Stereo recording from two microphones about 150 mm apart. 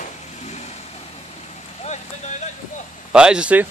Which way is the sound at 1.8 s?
50° left (ahead or behind).